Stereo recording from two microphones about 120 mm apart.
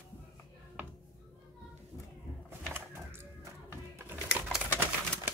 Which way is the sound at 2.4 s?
20° right (ahead or behind).